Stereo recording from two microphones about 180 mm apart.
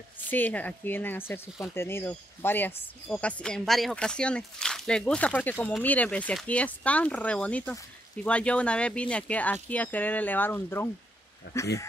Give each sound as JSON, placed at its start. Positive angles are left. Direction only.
{"t": 0.3, "sound": "speech", "side_deg": 10}